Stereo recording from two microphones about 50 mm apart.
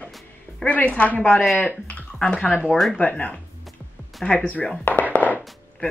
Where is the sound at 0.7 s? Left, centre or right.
Left.